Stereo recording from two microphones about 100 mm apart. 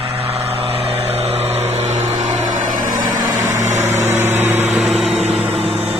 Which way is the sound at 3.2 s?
30° right (ahead or behind).